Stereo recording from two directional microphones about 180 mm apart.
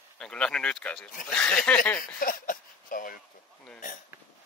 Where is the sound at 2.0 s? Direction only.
50° left (ahead or behind).